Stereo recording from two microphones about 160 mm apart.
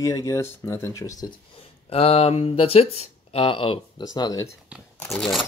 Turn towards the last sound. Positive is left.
turn(degrees=0)  # may be behind; listen again after turning